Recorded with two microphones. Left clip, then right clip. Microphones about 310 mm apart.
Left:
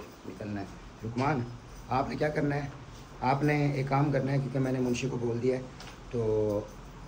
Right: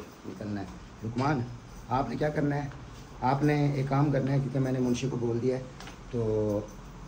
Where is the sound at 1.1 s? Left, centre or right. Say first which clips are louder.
Even; centre.